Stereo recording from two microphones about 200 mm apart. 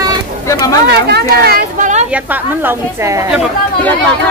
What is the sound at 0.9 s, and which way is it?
A woman's voice, 55° right (ahead or behind).